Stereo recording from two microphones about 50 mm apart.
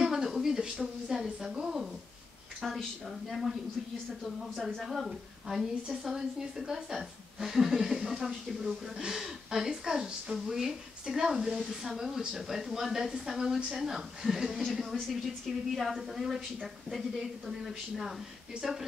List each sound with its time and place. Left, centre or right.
0.0 s a sound: centre
2.6 s a woman's voice: centre
4.8 s a woman's voice: centre